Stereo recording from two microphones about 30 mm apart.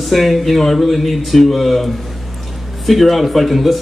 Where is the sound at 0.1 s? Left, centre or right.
Centre.